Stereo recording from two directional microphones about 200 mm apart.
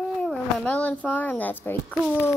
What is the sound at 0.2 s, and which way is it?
A child's voice, 5° left (ahead or behind).